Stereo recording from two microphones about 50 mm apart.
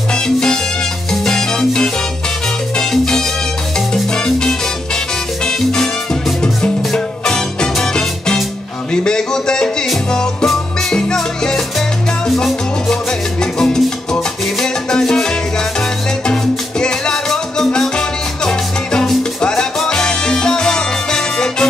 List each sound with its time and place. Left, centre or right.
0.1 s salsa music: centre
1.1 s music: centre
5.4 s salsa music: centre
6.9 s music: centre
16.8 s music: centre